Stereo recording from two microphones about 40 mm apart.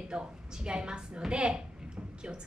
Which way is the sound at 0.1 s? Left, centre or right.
Right.